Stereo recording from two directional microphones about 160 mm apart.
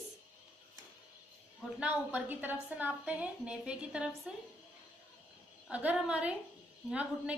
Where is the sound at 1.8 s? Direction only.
10° right (ahead or behind).